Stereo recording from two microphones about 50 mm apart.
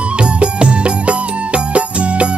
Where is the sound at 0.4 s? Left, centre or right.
Right.